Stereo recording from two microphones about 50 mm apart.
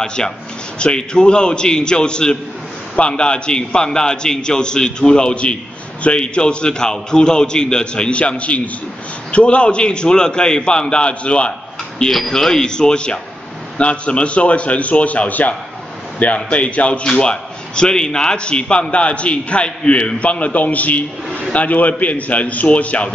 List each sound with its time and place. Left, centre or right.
0.0 s a man's voice: centre
12.1 s a man's voice: centre; by 23.0 s left